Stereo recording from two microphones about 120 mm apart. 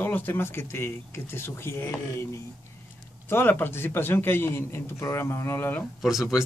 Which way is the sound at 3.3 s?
20° left (ahead or behind).